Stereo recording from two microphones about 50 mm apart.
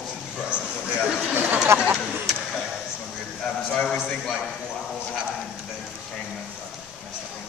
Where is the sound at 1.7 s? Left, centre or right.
Right.